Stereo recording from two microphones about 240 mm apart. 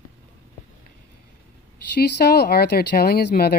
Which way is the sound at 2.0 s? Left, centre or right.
Left.